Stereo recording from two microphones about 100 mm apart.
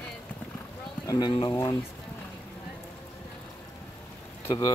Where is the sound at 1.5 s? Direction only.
35° left (ahead or behind).